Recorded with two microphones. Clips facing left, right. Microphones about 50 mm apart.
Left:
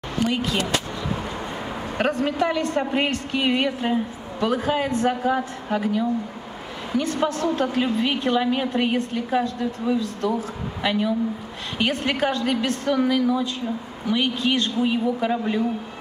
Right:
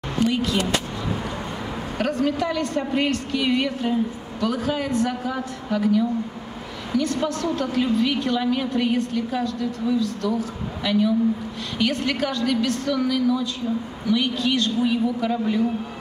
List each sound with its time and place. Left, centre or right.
2.0 s a woman's voice: left